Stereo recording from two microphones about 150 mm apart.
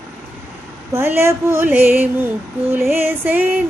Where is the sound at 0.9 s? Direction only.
15° right (ahead or behind).